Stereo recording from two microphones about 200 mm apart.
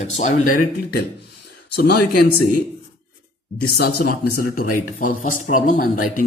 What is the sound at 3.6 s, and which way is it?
Speech, 50° left (ahead or behind).